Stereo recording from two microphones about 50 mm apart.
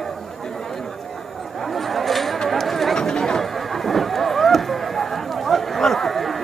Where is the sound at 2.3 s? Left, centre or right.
Centre.